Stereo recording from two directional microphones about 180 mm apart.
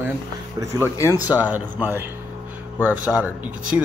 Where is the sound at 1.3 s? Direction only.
10° right (ahead or behind).